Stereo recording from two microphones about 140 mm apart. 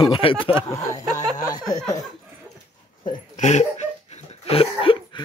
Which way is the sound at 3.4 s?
55° left (ahead or behind).